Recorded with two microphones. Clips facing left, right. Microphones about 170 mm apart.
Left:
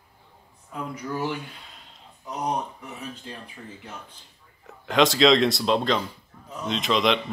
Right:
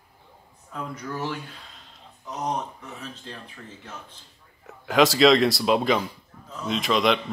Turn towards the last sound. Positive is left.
turn(degrees=0)  # may be behind; listen again after turning